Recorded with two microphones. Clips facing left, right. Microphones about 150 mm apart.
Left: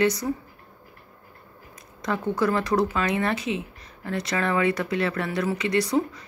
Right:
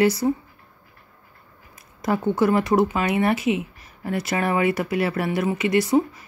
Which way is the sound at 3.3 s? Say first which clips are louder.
Right 5 dB; 30° left (ahead or behind).